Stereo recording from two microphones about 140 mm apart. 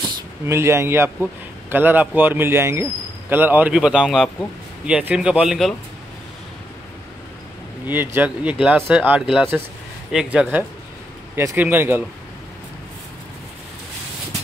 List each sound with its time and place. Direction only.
0.5 s a man's voice: 20° right (ahead or behind); by 5.8 s centre (ahead or behind)
7.8 s a man's voice: 15° right (ahead or behind)